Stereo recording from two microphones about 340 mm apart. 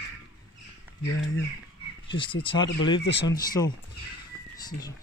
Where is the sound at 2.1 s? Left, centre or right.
Centre.